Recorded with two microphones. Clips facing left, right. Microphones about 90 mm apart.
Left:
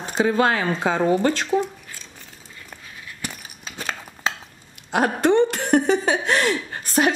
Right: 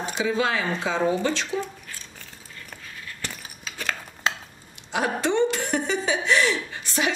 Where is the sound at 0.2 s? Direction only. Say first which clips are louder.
Left 6 dB; 50° left (ahead or behind).